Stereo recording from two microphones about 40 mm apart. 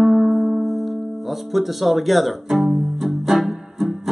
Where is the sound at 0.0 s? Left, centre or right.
Centre.